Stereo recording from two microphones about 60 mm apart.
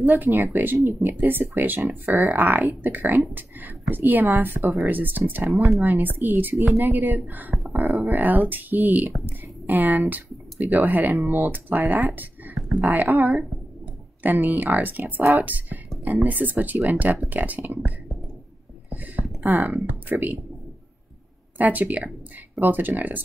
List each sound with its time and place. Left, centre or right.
0.1 s speech: right
4.6 s speech: right
4.8 s speech: right
5.5 s speech: centre
5.9 s speech: right
7.5 s speech: centre
8.1 s speech: right
18.9 s a sound: right
19.7 s speech: right
21.5 s speech: right